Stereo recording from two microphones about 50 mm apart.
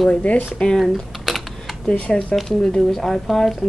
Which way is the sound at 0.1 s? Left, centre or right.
Left.